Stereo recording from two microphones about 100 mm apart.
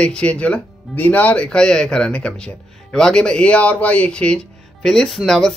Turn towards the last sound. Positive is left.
turn(degrees=0)  # may be behind; listen again after turning